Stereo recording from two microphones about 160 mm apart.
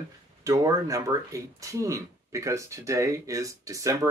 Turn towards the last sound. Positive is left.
turn(degrees=-20)  # may be behind; listen again after turning